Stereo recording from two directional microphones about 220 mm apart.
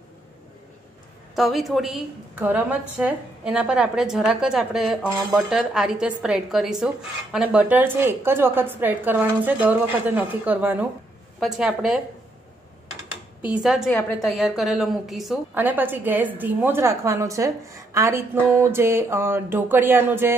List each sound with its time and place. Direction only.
1.3 s a woman's voice: centre (ahead or behind)
13.5 s a woman's voice: 5° right (ahead or behind)